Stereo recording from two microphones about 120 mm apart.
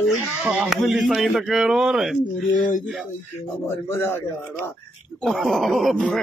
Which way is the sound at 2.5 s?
90° left.